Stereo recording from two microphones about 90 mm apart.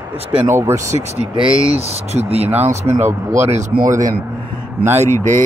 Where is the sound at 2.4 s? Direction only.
25° right (ahead or behind).